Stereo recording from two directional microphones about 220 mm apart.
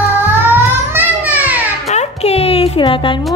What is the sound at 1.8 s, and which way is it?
Music, 30° left (ahead or behind).